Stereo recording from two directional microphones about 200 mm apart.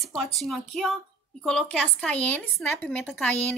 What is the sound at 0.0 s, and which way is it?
A woman's voice, centre (ahead or behind).